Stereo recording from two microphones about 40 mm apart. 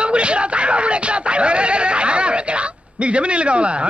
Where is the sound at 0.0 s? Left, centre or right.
Right.